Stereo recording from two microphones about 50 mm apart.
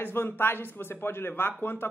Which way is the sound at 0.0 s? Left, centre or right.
Left.